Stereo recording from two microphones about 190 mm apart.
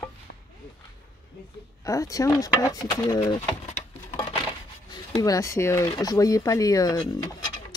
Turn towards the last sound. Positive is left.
turn(degrees=20)  # may be behind; listen again after turning